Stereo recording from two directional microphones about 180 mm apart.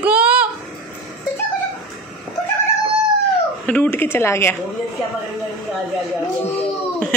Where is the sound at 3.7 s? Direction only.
10° left (ahead or behind).